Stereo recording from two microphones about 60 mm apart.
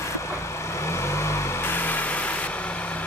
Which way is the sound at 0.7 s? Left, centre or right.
Left.